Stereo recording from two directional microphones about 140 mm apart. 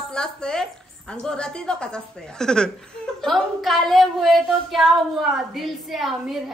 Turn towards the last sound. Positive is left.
turn(degrees=0)  # may be behind; listen again after turning